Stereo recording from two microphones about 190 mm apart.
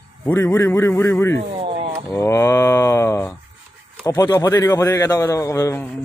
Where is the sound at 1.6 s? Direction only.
30° right (ahead or behind).